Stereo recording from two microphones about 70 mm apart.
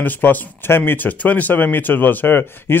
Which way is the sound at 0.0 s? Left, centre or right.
Left.